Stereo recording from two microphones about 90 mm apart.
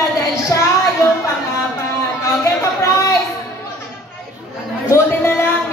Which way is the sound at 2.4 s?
35° left (ahead or behind).